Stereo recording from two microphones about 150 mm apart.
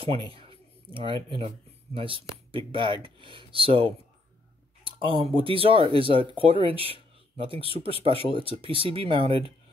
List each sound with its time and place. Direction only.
0.0 s speech: 40° right (ahead or behind)